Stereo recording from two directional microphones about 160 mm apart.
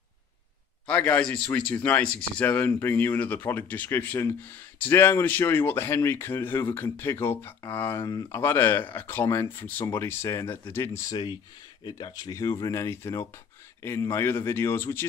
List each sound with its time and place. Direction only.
0.8 s speech: 10° left (ahead or behind)